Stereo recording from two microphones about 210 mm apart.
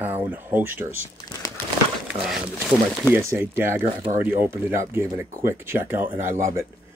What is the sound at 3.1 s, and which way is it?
Speech, 10° right (ahead or behind).